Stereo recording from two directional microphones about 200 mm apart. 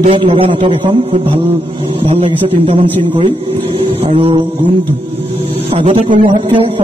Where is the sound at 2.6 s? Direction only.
30° right (ahead or behind).